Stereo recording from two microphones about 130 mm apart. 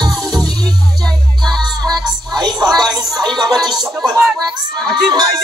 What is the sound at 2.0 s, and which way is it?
Music, 30° right (ahead or behind).